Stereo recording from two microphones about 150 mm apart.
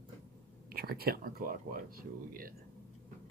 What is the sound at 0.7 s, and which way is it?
Speech, 90° right.